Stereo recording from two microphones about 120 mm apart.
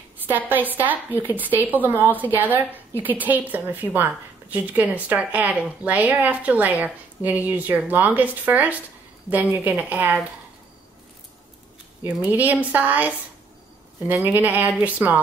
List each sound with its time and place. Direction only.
0.3 s a woman's voice: 15° right (ahead or behind)
12.0 s a woman's voice: 15° right (ahead or behind)
14.2 s a woman's voice: 15° right (ahead or behind)